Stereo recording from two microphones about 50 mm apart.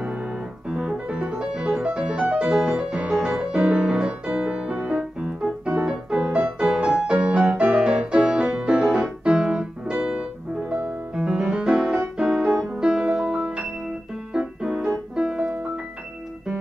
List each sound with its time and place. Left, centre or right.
0.7 s music: centre
2.5 s piano: centre
3.1 s music: centre
7.1 s music: right
11.1 s piano: centre
14.3 s keyboard: centre